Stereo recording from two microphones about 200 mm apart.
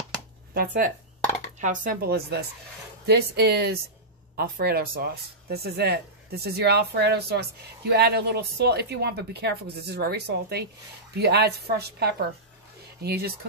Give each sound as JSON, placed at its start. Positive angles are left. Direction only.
{"t": 0.6, "sound": "speech", "side_deg": -40}